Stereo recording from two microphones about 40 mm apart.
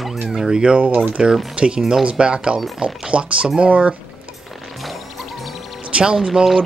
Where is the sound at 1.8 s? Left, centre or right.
Centre; by 3.9 s right.